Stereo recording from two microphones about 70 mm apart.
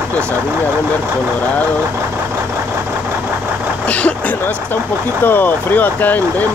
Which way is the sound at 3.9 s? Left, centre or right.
Centre.